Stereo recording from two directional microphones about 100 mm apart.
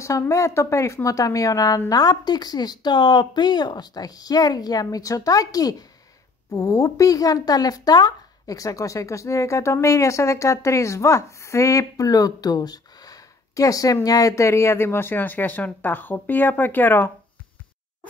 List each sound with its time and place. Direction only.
0.3 s speech: 30° left (ahead or behind)